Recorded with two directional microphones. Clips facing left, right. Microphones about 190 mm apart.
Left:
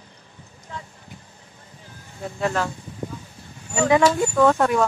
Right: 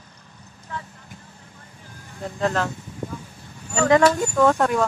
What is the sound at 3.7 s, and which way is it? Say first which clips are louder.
Speech: right 1 dB; 15° left (ahead or behind).